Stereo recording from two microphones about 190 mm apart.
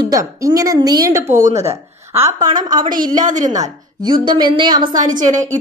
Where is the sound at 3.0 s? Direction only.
45° right (ahead or behind).